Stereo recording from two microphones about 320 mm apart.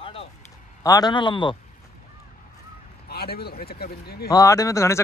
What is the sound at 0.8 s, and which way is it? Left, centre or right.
Speech, centre.